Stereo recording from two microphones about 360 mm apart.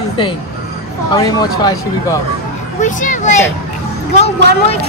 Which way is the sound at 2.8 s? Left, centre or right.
Left.